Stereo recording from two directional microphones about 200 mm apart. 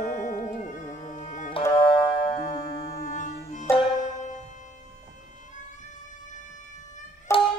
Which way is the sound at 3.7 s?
35° left (ahead or behind).